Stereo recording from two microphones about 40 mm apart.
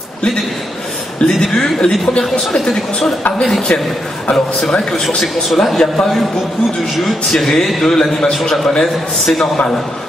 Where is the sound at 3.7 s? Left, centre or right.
Left.